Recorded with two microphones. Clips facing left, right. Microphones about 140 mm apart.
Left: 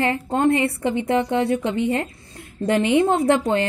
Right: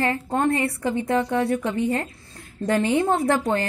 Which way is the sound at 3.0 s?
20° left (ahead or behind).